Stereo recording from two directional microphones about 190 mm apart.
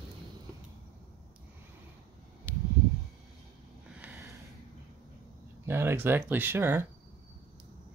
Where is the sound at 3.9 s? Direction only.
10° right (ahead or behind).